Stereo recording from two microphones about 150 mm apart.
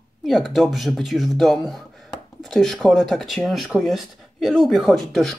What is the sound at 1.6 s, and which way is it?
Speech, centre (ahead or behind).